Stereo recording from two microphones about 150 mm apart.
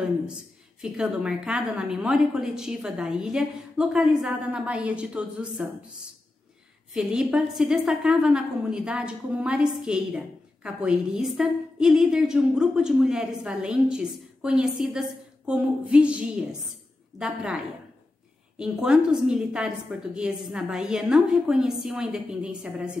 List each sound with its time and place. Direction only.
0.7 s a woman's voice: 5° right (ahead or behind)
6.9 s a woman's voice: 5° right (ahead or behind)
18.6 s a woman's voice: 5° right (ahead or behind)